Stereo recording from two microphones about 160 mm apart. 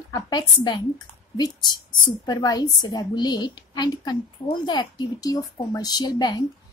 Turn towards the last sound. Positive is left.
turn(degrees=25)  # may be behind; listen again after turning